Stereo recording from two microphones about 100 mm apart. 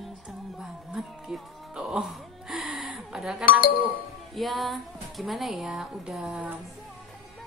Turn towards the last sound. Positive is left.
turn(degrees=-15)  # may be behind; listen again after turning